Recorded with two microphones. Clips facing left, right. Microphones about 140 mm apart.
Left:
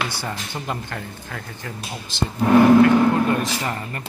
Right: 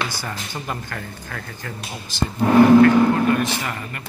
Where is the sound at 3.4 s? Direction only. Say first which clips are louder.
Even; 30° left (ahead or behind).